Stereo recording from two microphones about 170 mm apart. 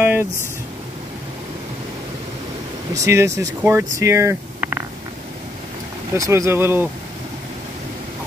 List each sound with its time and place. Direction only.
0.0 s speech: 10° right (ahead or behind)
3.0 s speech: 15° right (ahead or behind)
6.1 s speech: 20° right (ahead or behind)